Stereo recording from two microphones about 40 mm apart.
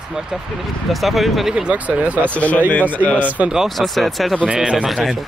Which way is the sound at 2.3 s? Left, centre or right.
Left.